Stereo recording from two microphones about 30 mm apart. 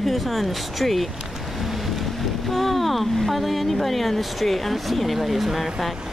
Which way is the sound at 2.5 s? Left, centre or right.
Centre.